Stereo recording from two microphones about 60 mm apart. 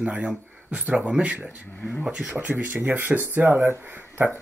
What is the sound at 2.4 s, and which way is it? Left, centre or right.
Speech, right.